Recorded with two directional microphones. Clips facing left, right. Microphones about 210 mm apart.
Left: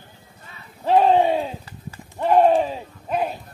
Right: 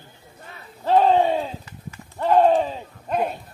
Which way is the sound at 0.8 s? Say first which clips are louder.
Left 1 dB; 15° left (ahead or behind).